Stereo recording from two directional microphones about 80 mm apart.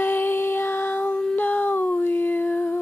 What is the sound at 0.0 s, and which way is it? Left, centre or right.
Child singing, left.